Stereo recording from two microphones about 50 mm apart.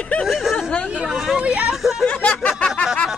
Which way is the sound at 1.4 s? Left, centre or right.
Right.